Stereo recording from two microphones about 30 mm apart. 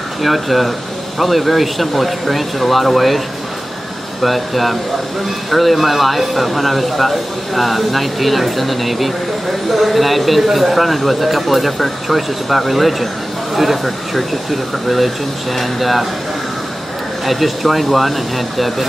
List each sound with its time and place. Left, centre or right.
0.2 s speech: centre
4.2 s speech: centre
17.3 s speech: centre